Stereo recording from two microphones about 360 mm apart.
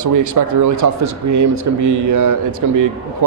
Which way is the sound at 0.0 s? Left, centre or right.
Right.